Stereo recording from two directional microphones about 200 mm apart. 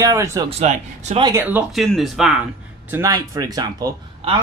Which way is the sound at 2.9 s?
15° right (ahead or behind).